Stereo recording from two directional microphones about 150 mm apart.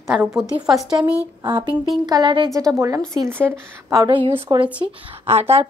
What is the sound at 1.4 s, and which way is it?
A woman's voice, 30° right (ahead or behind).